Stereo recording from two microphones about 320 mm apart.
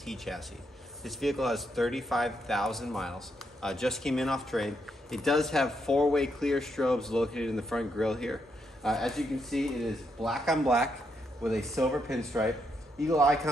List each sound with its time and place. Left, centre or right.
0.0 s a man's voice: centre